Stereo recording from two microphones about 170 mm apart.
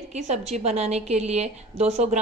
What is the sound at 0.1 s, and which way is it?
A woman's voice, 40° right (ahead or behind).